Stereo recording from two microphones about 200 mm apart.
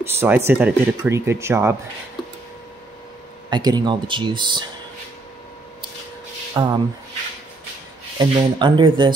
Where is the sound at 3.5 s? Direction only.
20° right (ahead or behind).